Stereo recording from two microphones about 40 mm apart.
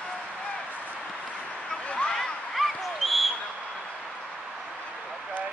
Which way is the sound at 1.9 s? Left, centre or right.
Left.